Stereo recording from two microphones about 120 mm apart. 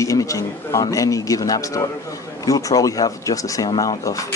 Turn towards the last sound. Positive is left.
turn(degrees=35)  # may be behind; listen again after turning